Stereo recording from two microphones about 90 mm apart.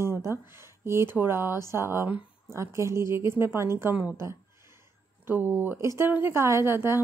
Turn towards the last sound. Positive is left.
turn(degrees=-25)  # may be behind; listen again after turning